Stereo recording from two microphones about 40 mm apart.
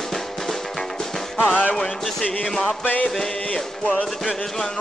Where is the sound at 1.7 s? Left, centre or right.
Centre.